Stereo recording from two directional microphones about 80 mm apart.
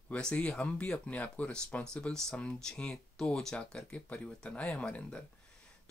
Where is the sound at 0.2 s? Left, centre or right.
Centre.